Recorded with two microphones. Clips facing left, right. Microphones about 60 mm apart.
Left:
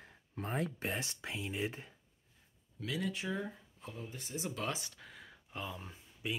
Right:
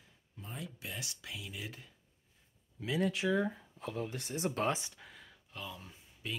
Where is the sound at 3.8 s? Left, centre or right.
Right.